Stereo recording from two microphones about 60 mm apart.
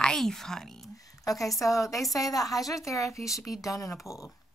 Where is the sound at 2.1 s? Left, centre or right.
Left.